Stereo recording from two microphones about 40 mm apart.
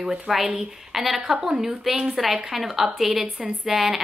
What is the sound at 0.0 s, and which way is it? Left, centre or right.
A woman's voice, centre.